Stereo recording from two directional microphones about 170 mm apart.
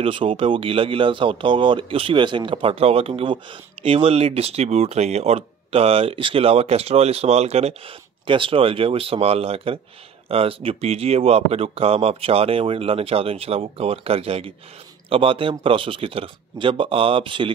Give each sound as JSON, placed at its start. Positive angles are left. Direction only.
{"t": 0.0, "sound": "speech", "side_deg": -30}